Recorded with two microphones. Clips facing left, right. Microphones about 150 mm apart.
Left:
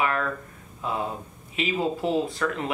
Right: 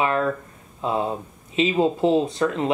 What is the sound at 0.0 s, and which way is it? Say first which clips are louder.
Speech: right 4 dB; 25° right (ahead or behind).